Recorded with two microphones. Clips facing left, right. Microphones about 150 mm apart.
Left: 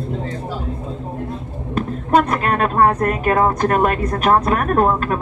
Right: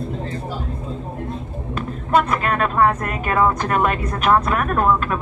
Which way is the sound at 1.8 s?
45° left (ahead or behind).